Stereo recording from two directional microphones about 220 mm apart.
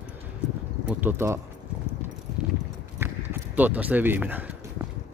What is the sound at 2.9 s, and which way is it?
Clip-clop, 10° right (ahead or behind).